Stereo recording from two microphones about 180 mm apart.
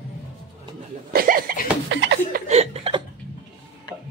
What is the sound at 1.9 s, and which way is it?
Speech, 90° right.